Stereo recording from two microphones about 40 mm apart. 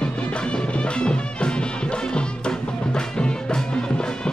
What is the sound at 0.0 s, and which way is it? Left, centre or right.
Music, left.